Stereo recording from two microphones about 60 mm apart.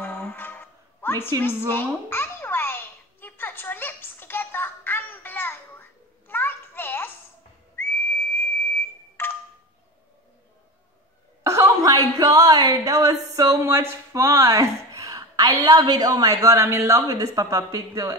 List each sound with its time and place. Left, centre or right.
0.0 s music: left
1.7 s a sound: left
7.7 s whistle: left
11.4 s a woman's voice: right
16.5 s speech: right
16.9 s speech: right